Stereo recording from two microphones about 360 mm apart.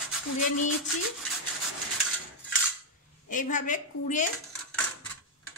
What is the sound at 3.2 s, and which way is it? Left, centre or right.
A woman's voice, left.